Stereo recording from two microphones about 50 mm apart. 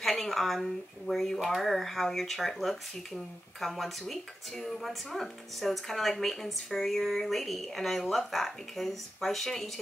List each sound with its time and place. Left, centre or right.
0.0 s speech: centre